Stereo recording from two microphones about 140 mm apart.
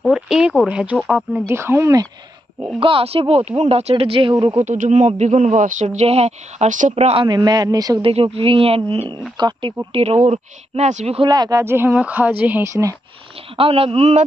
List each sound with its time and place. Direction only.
0.0 s a woman's voice: 5° right (ahead or behind)
1.4 s speech: 20° right (ahead or behind)
2.8 s speech: 40° right (ahead or behind)
4.4 s speech: 30° right (ahead or behind)
4.6 s speech: 60° right (ahead or behind)
7.2 s speech: 30° right (ahead or behind)
8.0 s speech: 40° right (ahead or behind)
9.9 s speech: 50° right (ahead or behind)
11.1 s speech: 30° right (ahead or behind)
11.6 s a woman's voice: 15° right (ahead or behind)
13.6 s speech: 45° right (ahead or behind)